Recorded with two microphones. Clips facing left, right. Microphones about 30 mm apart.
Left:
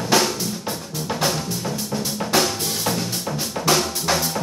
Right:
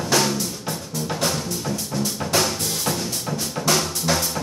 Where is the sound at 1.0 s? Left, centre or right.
Centre.